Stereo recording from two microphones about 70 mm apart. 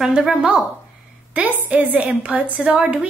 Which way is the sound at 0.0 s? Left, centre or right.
Centre.